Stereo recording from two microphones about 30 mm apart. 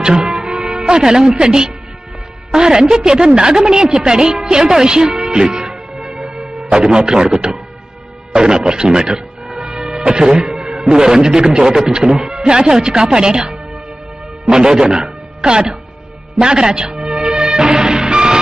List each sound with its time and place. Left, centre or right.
0.6 s music: centre
0.8 s a woman's voice: right
5.3 s music: right
6.7 s a woman's voice: right
8.3 s speech: right
9.8 s music: centre
10.0 s a woman's voice: right
16.9 s music: centre
17.3 s music: right